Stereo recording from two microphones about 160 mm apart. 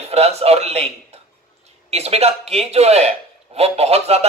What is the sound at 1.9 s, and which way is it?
Speech, 40° right (ahead or behind).